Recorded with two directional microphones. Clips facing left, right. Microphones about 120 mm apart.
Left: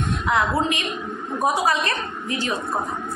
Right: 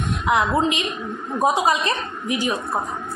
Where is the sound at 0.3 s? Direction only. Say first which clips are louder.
Right 2 dB; 20° right (ahead or behind).